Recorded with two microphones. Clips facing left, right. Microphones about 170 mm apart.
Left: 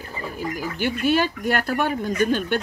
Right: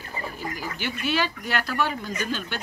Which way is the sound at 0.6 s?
50° left (ahead or behind).